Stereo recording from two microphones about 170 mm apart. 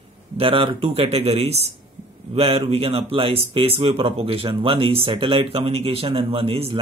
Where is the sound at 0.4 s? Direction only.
35° right (ahead or behind).